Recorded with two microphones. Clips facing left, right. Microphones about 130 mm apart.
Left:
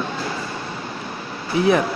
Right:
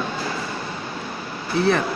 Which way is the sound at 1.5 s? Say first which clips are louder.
Left 2 dB; 15° left (ahead or behind).